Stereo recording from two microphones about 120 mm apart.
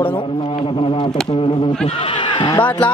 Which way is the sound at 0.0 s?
45° left (ahead or behind).